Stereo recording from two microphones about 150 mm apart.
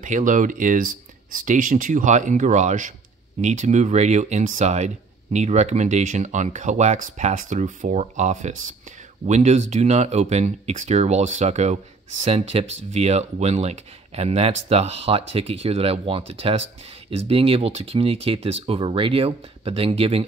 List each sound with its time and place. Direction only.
0.0 s speech: 60° right (ahead or behind); by 20.2 s 40° right (ahead or behind)